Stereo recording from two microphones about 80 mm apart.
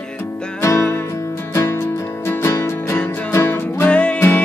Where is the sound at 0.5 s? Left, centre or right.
Left.